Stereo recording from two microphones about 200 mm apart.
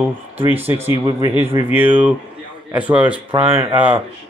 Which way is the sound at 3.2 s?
25° right (ahead or behind).